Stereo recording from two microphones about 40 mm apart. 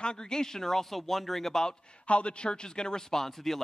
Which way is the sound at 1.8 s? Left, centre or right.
Left.